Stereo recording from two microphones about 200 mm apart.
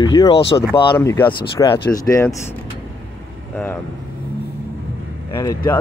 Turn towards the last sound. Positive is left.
turn(degrees=15)  # may be behind; listen again after turning